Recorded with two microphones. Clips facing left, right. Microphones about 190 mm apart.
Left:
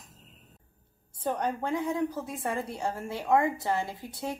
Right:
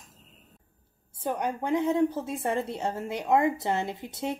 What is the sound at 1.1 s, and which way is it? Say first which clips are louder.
A woman's voice: even; 10° right (ahead or behind).